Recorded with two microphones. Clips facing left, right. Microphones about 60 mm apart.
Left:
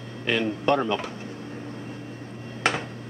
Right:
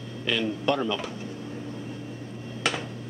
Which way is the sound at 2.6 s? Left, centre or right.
Left.